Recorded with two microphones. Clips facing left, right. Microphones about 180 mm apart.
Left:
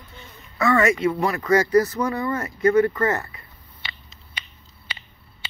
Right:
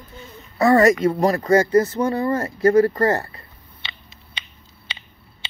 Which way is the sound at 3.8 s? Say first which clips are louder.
Even; 20° right (ahead or behind).